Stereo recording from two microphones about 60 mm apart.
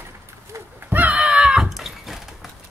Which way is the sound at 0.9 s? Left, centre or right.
Right.